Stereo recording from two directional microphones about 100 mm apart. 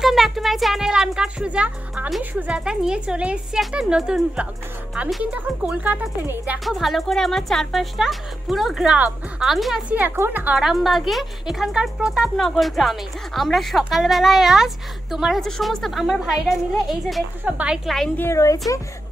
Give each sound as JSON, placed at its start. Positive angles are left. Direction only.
{"t": 0.0, "sound": "speech", "side_deg": 0}
{"t": 6.6, "sound": "speech", "side_deg": 0}
{"t": 9.8, "sound": "speech", "side_deg": -15}
{"t": 10.6, "sound": "speech", "side_deg": 0}
{"t": 17.5, "sound": "speech", "side_deg": -15}
{"t": 17.8, "sound": "speech", "side_deg": 5}
{"t": 18.3, "sound": "speech", "side_deg": 35}